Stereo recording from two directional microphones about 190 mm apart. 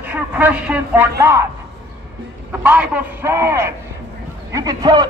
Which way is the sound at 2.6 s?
10° right (ahead or behind).